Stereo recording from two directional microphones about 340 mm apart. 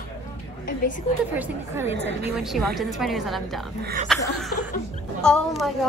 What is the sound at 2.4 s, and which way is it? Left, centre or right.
A woman's voice, centre.